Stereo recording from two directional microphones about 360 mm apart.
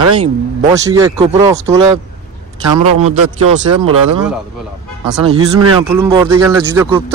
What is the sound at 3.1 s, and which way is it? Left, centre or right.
Speech, right.